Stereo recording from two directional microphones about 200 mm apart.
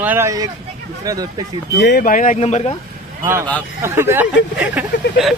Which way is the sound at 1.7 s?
60° left (ahead or behind).